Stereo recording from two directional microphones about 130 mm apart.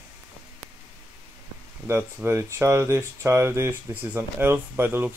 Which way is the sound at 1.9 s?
20° right (ahead or behind).